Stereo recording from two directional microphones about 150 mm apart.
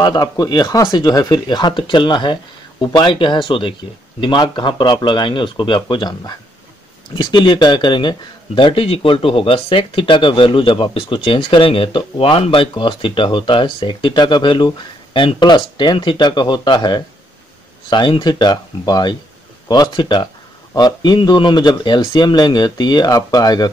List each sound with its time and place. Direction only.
0.0 s speech: 25° left (ahead or behind)